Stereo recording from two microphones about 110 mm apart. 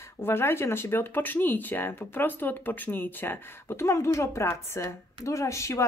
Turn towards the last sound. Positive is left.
turn(degrees=25)  # may be behind; listen again after turning